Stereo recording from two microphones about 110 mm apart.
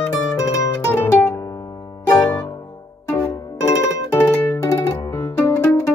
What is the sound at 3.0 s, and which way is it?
Music, 15° left (ahead or behind).